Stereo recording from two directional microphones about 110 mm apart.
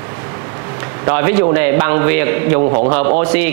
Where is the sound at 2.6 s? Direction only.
35° right (ahead or behind).